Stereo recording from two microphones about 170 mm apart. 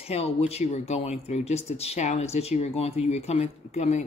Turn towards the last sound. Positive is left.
turn(degrees=40)  # may be behind; listen again after turning